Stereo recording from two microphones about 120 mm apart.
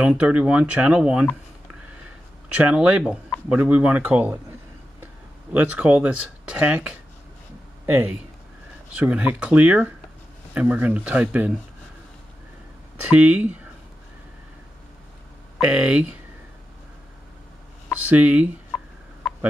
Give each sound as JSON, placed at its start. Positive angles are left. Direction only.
{"t": 0.0, "sound": "speech", "side_deg": -10}
{"t": 2.5, "sound": "speech", "side_deg": -10}
{"t": 13.0, "sound": "speech", "side_deg": -15}
{"t": 15.6, "sound": "speech", "side_deg": -10}
{"t": 18.0, "sound": "speech", "side_deg": -10}
{"t": 18.7, "sound": "a sound", "side_deg": 0}
{"t": 19.2, "sound": "fowl", "side_deg": 0}